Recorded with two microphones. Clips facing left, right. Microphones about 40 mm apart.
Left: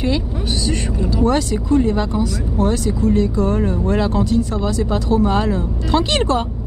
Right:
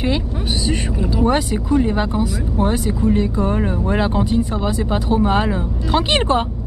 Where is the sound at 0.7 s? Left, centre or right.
Centre.